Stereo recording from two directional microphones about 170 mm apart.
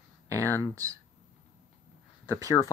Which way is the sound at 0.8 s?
20° right (ahead or behind).